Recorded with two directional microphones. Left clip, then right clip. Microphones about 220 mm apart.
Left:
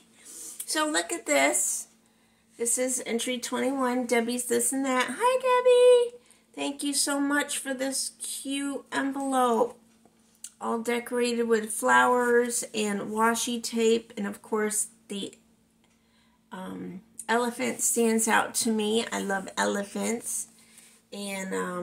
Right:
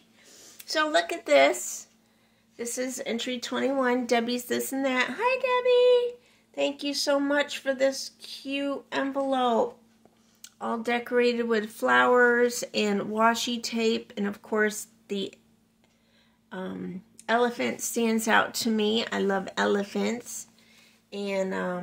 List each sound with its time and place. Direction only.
0.6 s a woman's voice: 30° right (ahead or behind)
10.4 s speech: 30° right (ahead or behind)
16.4 s a sound: 30° right (ahead or behind)
17.3 s speech: 30° right (ahead or behind)